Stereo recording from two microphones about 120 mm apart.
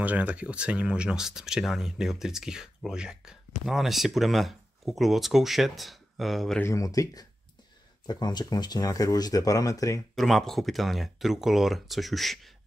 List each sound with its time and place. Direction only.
0.0 s speech: 15° right (ahead or behind)
6.6 s speech: 30° left (ahead or behind)
10.1 s speech: centre (ahead or behind)